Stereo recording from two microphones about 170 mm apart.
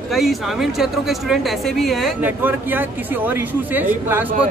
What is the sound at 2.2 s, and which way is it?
Speech, 10° right (ahead or behind).